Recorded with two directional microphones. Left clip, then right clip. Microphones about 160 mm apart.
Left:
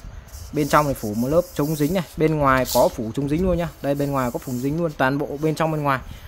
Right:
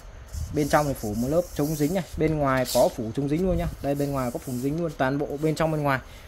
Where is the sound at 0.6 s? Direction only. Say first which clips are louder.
Left 4 dB; 25° left (ahead or behind).